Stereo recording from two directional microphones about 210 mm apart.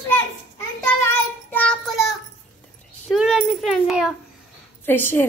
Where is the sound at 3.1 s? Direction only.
5° right (ahead or behind).